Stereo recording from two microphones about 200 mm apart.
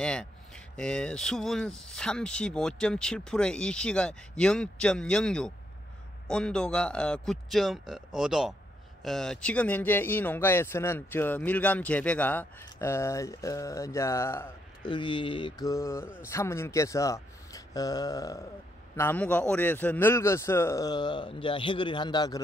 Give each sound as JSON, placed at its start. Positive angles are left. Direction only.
{"t": 0.0, "sound": "speech", "side_deg": 5}
{"t": 14.9, "sound": "mantra", "side_deg": 25}
{"t": 16.3, "sound": "speech", "side_deg": 15}